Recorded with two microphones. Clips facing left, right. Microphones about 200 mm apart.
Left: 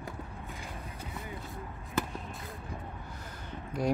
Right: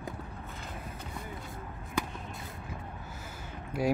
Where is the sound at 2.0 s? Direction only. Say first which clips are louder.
Left 1 dB; 5° left (ahead or behind).